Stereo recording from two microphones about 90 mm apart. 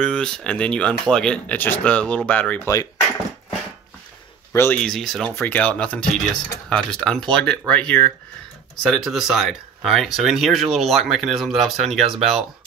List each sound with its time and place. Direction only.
0.0 s speech: 10° left (ahead or behind)
2.6 s speech: 40° left (ahead or behind)
4.5 s speech: 30° left (ahead or behind)
4.7 s speech: 5° left (ahead or behind)
5.5 s speech: 15° left (ahead or behind)
9.0 s speech: 5° right (ahead or behind)